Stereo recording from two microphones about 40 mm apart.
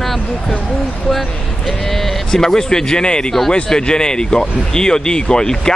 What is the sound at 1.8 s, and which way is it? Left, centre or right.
Speech, centre.